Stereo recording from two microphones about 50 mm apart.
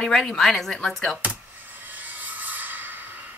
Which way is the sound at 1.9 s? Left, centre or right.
Right.